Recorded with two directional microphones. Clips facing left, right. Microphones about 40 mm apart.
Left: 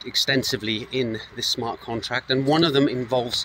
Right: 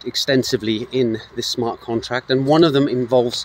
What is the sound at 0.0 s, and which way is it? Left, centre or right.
Speech, left.